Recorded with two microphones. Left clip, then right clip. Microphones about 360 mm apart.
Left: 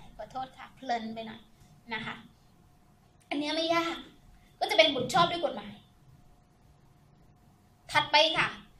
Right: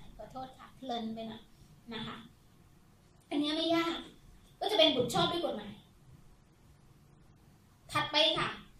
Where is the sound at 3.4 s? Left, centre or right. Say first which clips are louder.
Left 2 dB; left.